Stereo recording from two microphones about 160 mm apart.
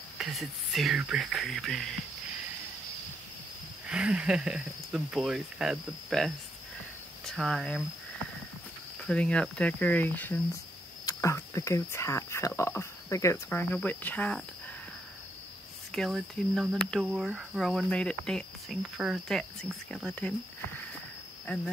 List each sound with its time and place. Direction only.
0.2 s cricket: centre (ahead or behind)
3.8 s cricket: 5° right (ahead or behind)
7.2 s speech: centre (ahead or behind)
9.0 s speech: 5° left (ahead or behind)
15.9 s cricket: centre (ahead or behind)
20.1 s speech: 10° left (ahead or behind)